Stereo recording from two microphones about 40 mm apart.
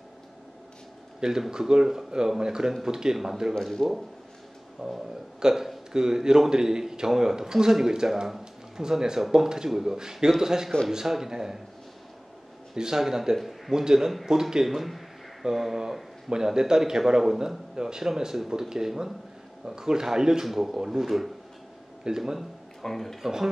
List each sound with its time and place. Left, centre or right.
1.5 s speech: centre
3.8 s a man's voice: centre
4.8 s speech: centre
12.7 s speech: centre
14.7 s speech: centre
22.8 s speech: centre
23.2 s speech: centre